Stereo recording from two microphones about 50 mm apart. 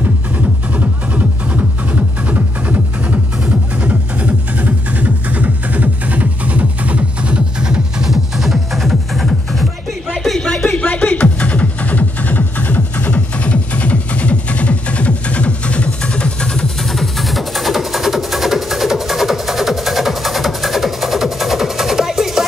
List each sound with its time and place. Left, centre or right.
0.7 s music: right
8.1 s music: centre
10.1 s a sound: centre
10.8 s music: left; by 16.7 s centre
16.9 s music: centre